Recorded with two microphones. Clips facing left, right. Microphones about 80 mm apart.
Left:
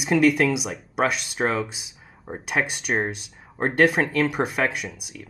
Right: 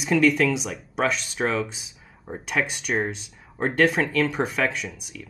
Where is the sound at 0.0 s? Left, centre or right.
Centre.